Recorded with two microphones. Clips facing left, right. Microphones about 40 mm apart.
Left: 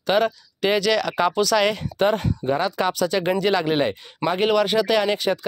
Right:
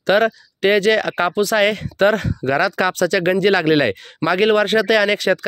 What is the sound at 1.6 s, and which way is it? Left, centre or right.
Speech, right.